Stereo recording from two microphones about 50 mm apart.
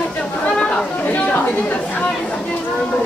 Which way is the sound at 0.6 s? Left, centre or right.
Centre.